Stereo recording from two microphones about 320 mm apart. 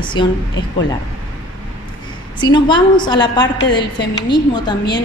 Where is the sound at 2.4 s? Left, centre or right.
Centre.